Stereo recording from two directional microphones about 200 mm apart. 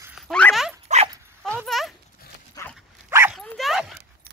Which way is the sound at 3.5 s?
Centre (ahead or behind).